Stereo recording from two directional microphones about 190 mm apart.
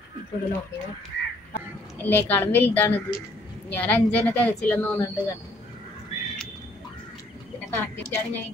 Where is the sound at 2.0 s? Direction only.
10° left (ahead or behind).